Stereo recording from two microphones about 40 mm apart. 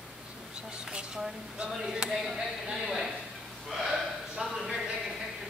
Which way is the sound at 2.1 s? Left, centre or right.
Centre.